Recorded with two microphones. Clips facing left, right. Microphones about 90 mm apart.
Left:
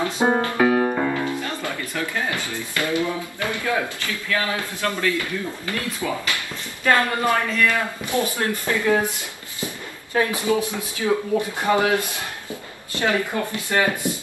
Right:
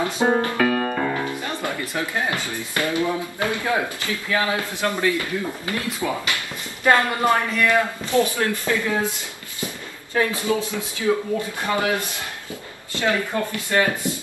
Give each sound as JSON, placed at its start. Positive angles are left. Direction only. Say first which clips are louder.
{"t": 0.2, "sound": "speech", "louder": "even", "side_deg": 15}
{"t": 0.6, "sound": "music", "louder": "left 2 dB", "side_deg": 20}
{"t": 1.1, "sound": "speech", "louder": "left 1 dB", "side_deg": -15}
{"t": 8.8, "sound": "speech", "louder": "left 3 dB", "side_deg": 20}
{"t": 10.1, "sound": "speech", "louder": "left 1 dB", "side_deg": 20}